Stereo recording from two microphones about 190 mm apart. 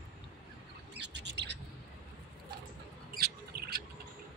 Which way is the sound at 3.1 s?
50° right (ahead or behind).